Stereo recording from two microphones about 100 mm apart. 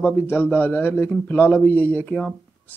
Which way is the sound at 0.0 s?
20° left (ahead or behind).